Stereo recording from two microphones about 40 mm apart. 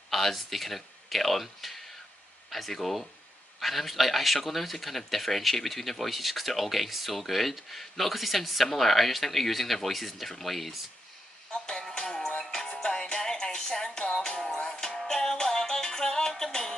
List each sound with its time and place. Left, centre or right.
0.1 s speech: centre
11.5 s a sound: centre
11.9 s music: centre